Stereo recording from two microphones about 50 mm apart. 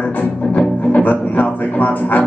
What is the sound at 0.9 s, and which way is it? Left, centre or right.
Speech, left.